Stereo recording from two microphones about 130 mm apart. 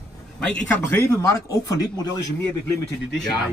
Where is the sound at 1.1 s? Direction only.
25° left (ahead or behind).